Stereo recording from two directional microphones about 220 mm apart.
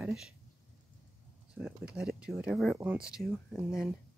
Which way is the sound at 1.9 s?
5° right (ahead or behind).